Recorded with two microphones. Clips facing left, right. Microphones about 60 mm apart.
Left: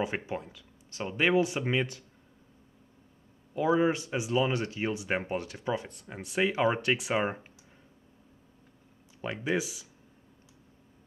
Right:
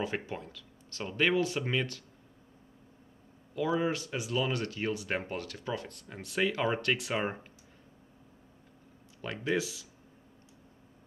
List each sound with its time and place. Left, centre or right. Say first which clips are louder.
0.0 s speech: left 3 dB; centre
3.5 s speech: left 4 dB; left
9.2 s speech: left 1 dB; centre